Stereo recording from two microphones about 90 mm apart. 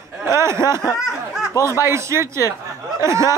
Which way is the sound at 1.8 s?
30° right (ahead or behind).